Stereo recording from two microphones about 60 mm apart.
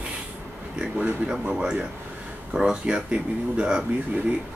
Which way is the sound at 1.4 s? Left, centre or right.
Centre.